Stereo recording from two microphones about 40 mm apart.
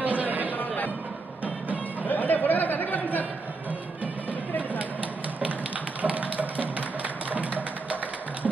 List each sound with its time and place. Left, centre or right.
0.0 s chatter: right
0.5 s music: left
2.0 s chatter: left
4.0 s music: right
6.0 s music: right